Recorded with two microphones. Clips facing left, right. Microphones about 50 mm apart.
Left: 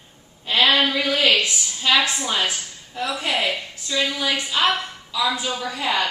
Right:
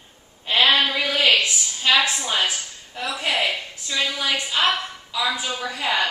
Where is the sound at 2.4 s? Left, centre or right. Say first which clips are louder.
Even; centre.